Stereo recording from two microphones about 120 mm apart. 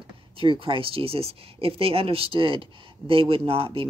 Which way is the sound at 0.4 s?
45° right (ahead or behind).